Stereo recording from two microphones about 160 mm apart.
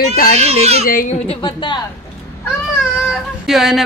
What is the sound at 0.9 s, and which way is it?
Speech, 60° left (ahead or behind).